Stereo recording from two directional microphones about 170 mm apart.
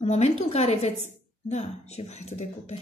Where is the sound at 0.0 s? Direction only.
40° left (ahead or behind).